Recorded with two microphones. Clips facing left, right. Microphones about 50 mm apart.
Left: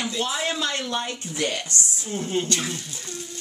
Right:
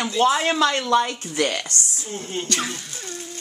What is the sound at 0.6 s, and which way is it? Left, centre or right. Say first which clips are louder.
Speech: right 8 dB; right.